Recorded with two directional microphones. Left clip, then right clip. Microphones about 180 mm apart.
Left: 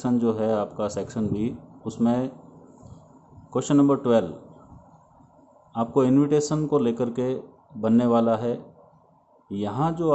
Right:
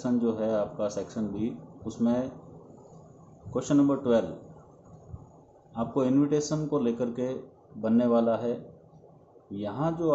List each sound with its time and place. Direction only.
0.0 s speech: 45° left (ahead or behind)
3.5 s speech: 50° left (ahead or behind)
5.7 s speech: 45° left (ahead or behind)